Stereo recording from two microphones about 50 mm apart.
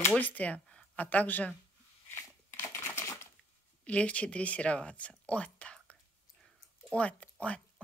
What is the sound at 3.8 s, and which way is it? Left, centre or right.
Speech, left.